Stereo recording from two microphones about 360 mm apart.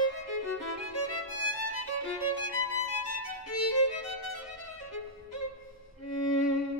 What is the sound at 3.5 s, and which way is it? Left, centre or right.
Music, left.